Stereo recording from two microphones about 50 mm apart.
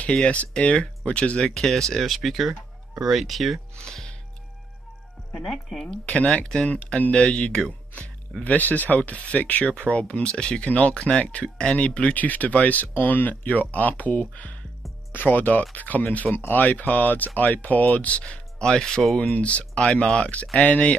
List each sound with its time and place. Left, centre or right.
0.1 s speech: left
1.5 s speech: centre
3.7 s music: centre
5.3 s speech: centre
5.9 s speech: centre
8.5 s speech: left; by 19.0 s centre
19.3 s speech: left